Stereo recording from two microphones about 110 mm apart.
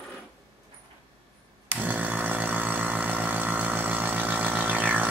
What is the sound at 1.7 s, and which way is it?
Chainsaw, 15° right (ahead or behind).